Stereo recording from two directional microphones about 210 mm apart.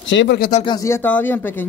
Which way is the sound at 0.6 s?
15° left (ahead or behind).